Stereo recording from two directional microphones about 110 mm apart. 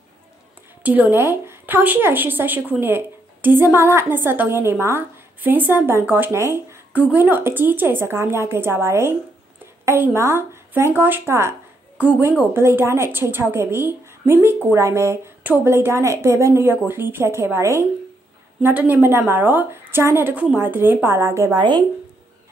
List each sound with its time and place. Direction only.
0.8 s a woman's voice: 15° right (ahead or behind)
21.5 s speech: 45° right (ahead or behind)